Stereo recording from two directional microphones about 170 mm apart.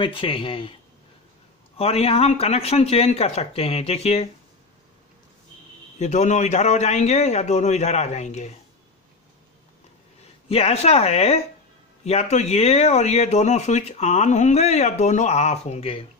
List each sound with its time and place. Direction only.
0.0 s speech: 30° left (ahead or behind)
1.8 s speech: 35° left (ahead or behind)
5.9 s a man's voice: 45° left (ahead or behind)
10.2 s speech: 35° left (ahead or behind)